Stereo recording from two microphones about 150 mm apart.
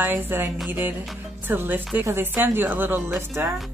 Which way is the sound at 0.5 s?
Centre (ahead or behind).